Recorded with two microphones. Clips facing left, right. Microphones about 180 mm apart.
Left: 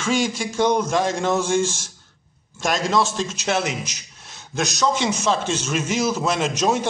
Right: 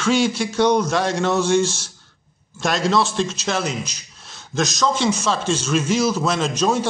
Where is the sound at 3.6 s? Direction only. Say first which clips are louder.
Right 1 dB; 75° left (ahead or behind).